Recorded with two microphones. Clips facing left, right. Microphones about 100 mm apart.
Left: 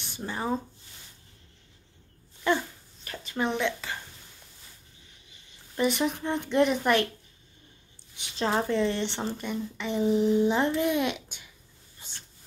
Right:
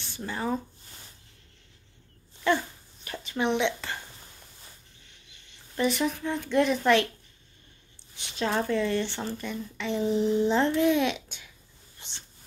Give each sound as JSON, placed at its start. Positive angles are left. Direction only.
{"t": 0.0, "sound": "speech", "side_deg": 20}
{"t": 3.3, "sound": "a woman's voice", "side_deg": -20}
{"t": 5.8, "sound": "speech", "side_deg": 20}
{"t": 8.4, "sound": "speech", "side_deg": 25}